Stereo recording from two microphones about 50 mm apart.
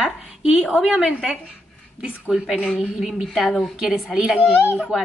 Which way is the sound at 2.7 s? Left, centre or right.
Centre.